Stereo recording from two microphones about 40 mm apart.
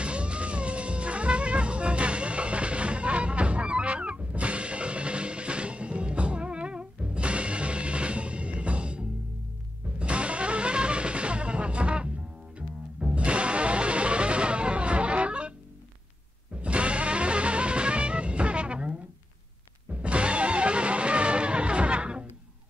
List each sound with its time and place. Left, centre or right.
0.0 s cat: right
9.9 s music: right
16.6 s music: right